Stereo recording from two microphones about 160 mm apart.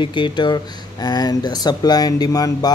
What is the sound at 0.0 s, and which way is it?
Speech, 30° left (ahead or behind).